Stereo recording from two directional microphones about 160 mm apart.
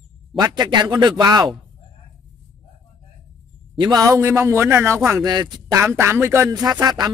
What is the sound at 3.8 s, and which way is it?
A man's voice, 25° right (ahead or behind).